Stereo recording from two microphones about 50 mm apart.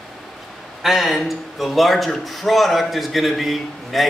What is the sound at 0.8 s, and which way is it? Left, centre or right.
A man's voice, centre.